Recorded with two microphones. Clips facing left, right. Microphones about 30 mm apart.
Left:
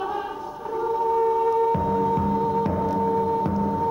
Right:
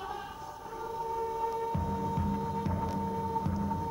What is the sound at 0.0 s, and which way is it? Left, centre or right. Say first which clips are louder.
Music: left 11 dB; left.